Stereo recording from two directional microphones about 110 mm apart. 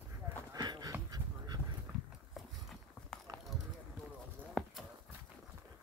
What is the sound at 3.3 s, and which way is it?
Clip-clop, 35° right (ahead or behind).